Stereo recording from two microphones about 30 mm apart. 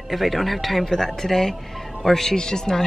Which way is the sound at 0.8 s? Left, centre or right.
Centre.